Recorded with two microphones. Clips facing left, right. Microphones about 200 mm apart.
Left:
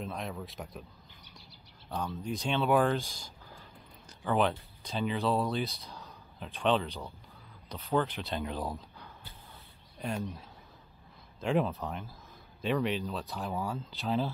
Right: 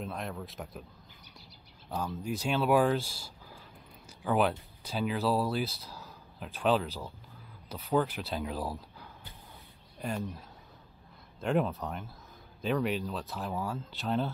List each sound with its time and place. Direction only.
0.0 s speech: centre (ahead or behind)
2.2 s speech: 5° right (ahead or behind)